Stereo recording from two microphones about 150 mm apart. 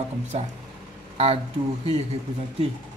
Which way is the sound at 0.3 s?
45° right (ahead or behind).